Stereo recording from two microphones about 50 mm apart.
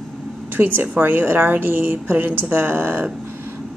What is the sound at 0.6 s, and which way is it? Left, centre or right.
Speech, right.